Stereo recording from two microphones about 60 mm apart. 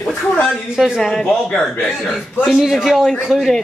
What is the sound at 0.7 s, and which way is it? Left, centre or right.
Speech, centre.